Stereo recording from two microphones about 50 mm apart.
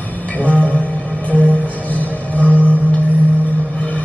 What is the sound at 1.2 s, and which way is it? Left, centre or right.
Music, left.